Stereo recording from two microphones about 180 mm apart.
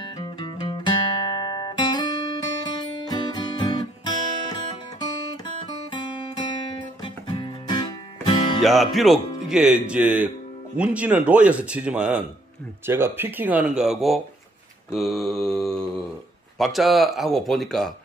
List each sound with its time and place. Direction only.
0.0 s music: 25° left (ahead or behind)
5.0 s guitar: 20° left (ahead or behind)
8.5 s speech: centre (ahead or behind)